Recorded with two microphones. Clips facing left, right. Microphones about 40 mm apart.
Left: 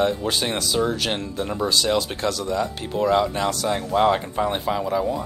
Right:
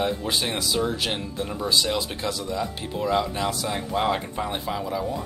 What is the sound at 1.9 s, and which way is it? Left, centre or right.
Speech, centre.